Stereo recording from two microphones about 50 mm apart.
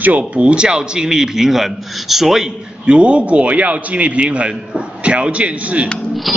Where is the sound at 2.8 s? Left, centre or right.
Right.